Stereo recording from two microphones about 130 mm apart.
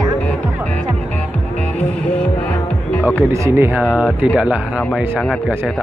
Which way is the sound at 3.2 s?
20° right (ahead or behind).